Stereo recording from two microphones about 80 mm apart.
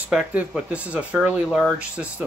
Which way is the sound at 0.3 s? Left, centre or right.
Centre.